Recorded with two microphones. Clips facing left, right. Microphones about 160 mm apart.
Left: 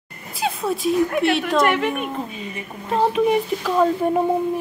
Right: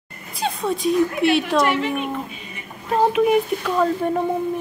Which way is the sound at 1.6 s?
55° left (ahead or behind).